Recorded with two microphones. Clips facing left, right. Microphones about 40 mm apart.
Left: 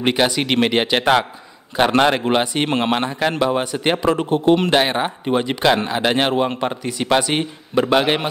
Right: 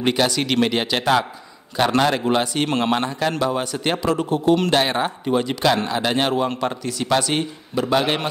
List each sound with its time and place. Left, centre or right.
0.0 s speech: left
4.6 s a man's voice: centre
8.0 s speech: centre